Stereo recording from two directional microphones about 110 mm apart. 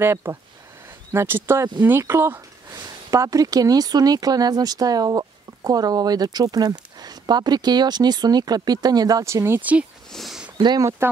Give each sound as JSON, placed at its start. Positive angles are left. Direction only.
{"t": 0.0, "sound": "speech", "side_deg": -25}
{"t": 2.7, "sound": "speech", "side_deg": -30}
{"t": 10.1, "sound": "a sound", "side_deg": 0}
{"t": 10.6, "sound": "speech", "side_deg": -40}